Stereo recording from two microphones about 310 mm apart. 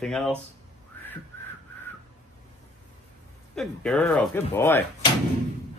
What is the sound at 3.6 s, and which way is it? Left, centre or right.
Speech, centre.